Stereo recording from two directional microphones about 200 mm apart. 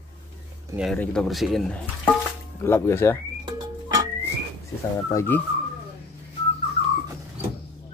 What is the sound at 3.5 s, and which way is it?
Music, 20° right (ahead or behind).